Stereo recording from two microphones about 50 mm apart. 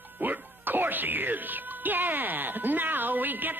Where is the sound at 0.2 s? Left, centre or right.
Right.